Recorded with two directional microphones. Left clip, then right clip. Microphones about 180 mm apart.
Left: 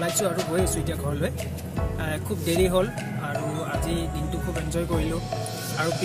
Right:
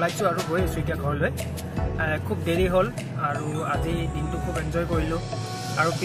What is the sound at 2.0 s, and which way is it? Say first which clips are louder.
Speech: right 5 dB; 20° left (ahead or behind).